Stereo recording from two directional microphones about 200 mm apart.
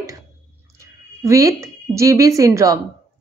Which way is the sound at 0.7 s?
15° right (ahead or behind).